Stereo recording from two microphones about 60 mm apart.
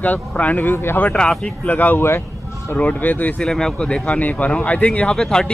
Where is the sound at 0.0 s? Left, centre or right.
Left.